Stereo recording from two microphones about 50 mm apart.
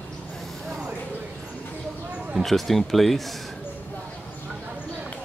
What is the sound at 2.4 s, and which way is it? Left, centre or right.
Speech, centre.